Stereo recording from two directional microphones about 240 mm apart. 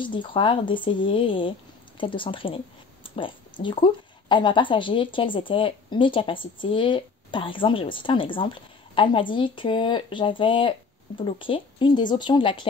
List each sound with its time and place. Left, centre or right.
0.0 s speech: centre